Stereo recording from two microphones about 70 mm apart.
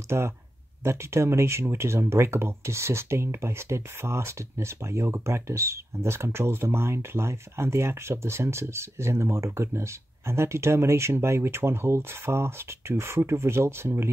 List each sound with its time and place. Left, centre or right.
0.1 s speech: right